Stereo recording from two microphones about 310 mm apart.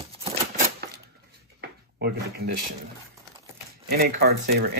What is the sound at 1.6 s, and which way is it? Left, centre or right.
Drawer open or close, right.